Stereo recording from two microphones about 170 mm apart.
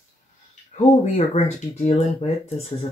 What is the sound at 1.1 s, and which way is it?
Speech, 40° left (ahead or behind).